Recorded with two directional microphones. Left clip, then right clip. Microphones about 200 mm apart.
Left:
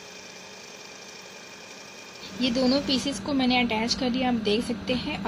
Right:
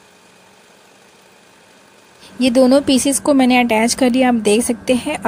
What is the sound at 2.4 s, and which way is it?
A woman's voice, 45° right (ahead or behind).